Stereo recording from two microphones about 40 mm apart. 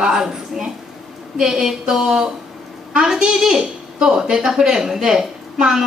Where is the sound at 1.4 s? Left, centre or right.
Centre.